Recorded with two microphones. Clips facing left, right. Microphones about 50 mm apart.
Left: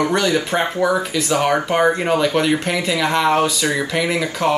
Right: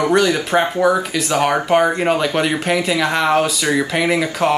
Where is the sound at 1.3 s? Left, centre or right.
Right.